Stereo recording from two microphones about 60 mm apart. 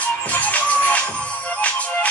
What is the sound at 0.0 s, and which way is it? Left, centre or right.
Music, left.